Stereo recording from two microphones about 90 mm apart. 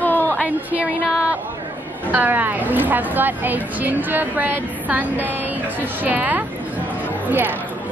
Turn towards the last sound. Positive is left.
turn(degrees=-20)  # may be behind; listen again after turning